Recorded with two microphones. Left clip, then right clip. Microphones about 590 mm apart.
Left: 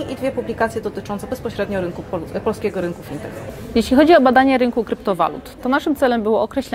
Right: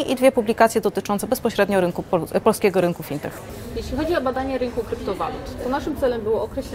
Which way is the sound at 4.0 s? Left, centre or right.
Left.